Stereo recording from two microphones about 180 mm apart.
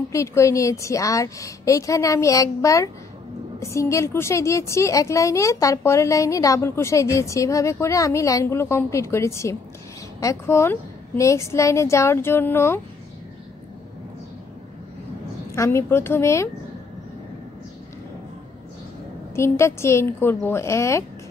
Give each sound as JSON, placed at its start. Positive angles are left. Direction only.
{"t": 0.1, "sound": "a woman's voice", "side_deg": 15}
{"t": 15.5, "sound": "a woman's voice", "side_deg": 15}
{"t": 19.3, "sound": "a woman's voice", "side_deg": 15}